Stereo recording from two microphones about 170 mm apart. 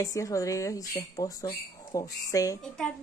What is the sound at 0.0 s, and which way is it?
A woman's voice, 20° left (ahead or behind).